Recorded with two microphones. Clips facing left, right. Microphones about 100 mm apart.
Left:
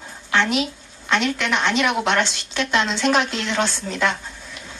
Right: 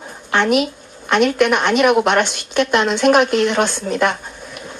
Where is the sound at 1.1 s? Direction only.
55° right (ahead or behind).